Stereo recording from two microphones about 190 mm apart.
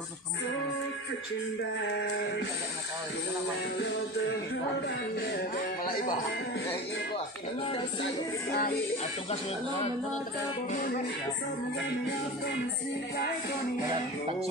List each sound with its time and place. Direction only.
8.5 s speech: 50° left (ahead or behind)
10.7 s speech: 45° left (ahead or behind)